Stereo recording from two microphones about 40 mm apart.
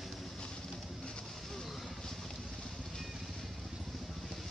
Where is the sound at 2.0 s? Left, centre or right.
Centre.